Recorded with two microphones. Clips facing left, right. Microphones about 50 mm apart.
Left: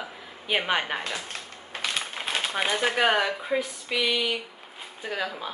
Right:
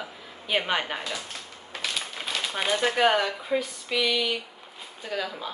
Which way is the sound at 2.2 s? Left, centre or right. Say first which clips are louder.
Left 2 dB; left.